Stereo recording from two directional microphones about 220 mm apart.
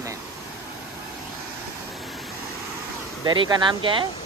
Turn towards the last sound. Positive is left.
turn(degrees=-20)  # may be behind; listen again after turning